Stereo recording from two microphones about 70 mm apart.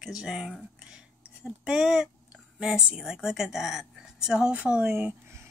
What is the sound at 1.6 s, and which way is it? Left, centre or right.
A woman's voice, centre.